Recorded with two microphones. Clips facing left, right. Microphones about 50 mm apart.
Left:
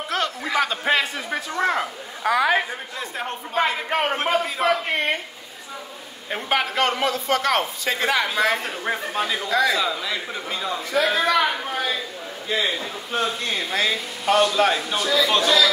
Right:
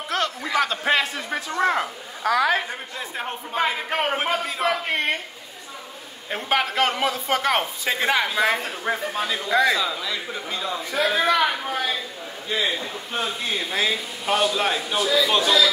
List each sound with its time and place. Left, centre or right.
0.1 s a sound: centre
2.2 s a man's voice: centre
6.3 s speech: centre
7.2 s a man's voice: centre
9.5 s a man's voice: right
9.8 s a man's voice: centre